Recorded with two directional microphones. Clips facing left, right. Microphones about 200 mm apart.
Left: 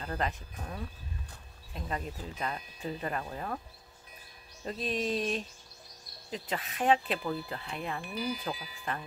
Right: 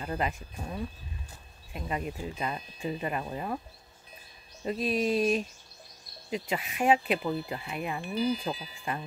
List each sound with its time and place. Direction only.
0.0 s speech: 10° right (ahead or behind)
4.6 s speech: 5° right (ahead or behind)
7.2 s speech: 25° right (ahead or behind)
7.5 s speech: 10° right (ahead or behind)
8.0 s speech: 25° right (ahead or behind)